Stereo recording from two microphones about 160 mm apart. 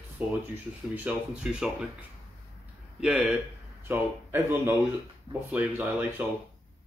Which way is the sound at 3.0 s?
5° right (ahead or behind).